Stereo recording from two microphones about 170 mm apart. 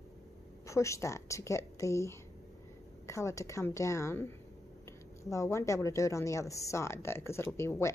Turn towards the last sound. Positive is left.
turn(degrees=15)  # may be behind; listen again after turning